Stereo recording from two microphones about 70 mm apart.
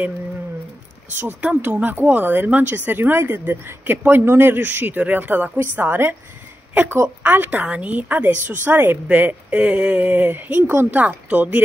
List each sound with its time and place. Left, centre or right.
1.2 s a woman's voice: right